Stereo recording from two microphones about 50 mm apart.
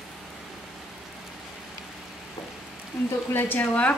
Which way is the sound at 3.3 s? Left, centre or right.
Left.